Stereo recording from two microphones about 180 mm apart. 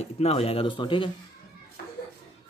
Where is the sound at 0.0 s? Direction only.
35° left (ahead or behind).